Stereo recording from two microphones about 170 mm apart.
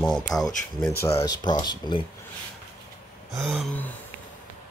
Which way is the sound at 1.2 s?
25° left (ahead or behind).